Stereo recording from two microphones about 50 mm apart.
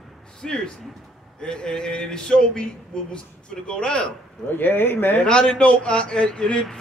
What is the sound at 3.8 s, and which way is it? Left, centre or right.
Speech, centre.